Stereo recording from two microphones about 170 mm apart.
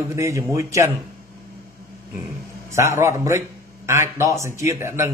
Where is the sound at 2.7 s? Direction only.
15° right (ahead or behind).